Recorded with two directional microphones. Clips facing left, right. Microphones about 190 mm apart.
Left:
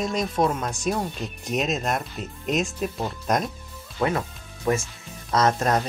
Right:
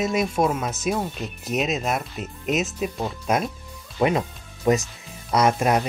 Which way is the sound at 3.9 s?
20° right (ahead or behind).